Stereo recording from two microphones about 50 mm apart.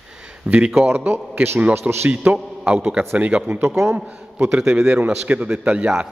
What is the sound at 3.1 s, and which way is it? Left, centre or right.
Speech, right.